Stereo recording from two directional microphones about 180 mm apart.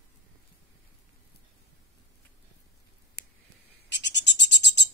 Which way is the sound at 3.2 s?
65° left (ahead or behind).